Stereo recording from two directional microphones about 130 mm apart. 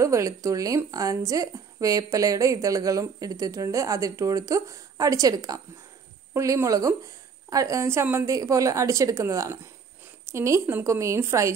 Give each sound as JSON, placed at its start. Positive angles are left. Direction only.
{"t": 0.0, "sound": "speech", "side_deg": -25}